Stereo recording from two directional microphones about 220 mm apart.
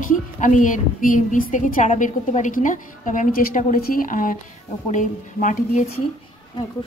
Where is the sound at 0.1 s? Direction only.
35° left (ahead or behind).